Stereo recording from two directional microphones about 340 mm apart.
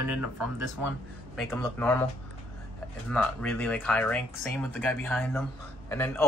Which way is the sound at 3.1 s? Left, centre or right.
Centre.